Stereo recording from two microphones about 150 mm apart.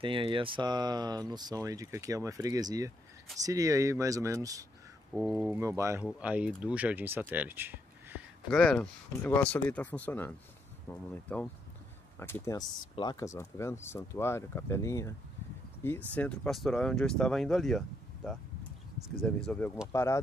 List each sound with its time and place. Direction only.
0.0 s speech: 35° right (ahead or behind)
5.2 s speech: 10° right (ahead or behind)
6.0 s speech: 10° right (ahead or behind)
8.5 s speech: 5° left (ahead or behind)
16.1 s speech: 10° left (ahead or behind)